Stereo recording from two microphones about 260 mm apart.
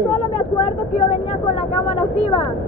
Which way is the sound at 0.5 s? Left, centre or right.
Left.